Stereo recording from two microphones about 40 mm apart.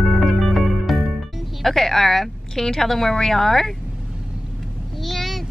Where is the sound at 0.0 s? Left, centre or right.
Centre.